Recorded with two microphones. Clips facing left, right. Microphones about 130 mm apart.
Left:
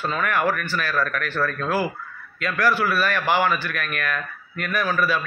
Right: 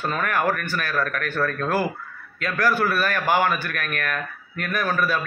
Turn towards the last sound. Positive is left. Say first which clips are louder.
# left 1 dB
turn(degrees=-50)  # may be behind; listen again after turning